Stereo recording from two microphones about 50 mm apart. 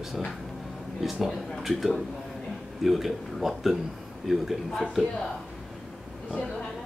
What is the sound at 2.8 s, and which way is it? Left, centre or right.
A man's voice, centre.